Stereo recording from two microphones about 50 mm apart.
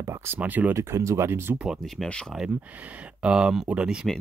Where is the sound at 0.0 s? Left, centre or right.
Right.